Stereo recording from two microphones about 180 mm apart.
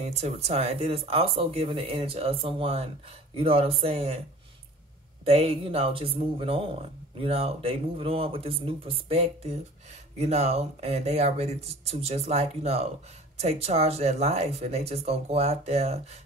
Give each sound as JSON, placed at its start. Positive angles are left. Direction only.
{"t": 0.0, "sound": "speech", "side_deg": -35}
{"t": 5.2, "sound": "speech", "side_deg": -35}